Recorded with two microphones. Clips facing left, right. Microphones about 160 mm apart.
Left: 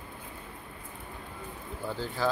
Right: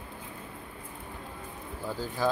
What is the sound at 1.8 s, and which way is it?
Speech, 10° right (ahead or behind).